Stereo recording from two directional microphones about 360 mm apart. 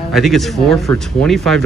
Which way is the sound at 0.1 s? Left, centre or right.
Centre.